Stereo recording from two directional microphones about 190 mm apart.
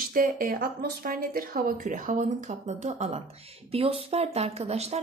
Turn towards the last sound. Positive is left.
turn(degrees=-35)  # may be behind; listen again after turning